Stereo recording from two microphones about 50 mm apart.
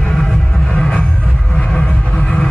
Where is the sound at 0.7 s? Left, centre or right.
Left.